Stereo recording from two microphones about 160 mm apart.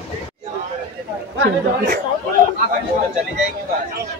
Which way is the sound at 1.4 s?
90° right.